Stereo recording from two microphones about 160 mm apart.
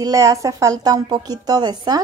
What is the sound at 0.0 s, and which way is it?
Speech, 20° right (ahead or behind).